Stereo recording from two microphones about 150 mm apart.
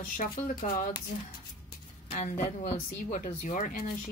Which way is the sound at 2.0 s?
45° left (ahead or behind).